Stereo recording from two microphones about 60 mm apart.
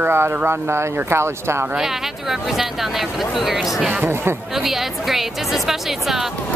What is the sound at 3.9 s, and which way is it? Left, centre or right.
Speech, right.